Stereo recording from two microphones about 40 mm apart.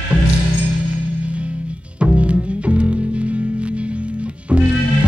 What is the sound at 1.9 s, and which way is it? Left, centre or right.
Music, right.